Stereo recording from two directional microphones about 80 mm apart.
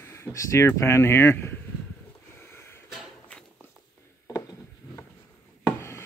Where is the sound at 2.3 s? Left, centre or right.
Left.